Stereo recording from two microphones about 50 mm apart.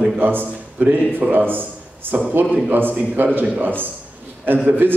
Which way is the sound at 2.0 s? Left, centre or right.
Right.